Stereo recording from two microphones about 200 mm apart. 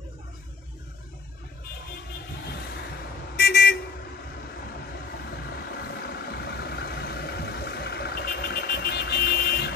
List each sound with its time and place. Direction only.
3.3 s vehicle: 50° left (ahead or behind)
5.7 s vehicle: 50° left (ahead or behind)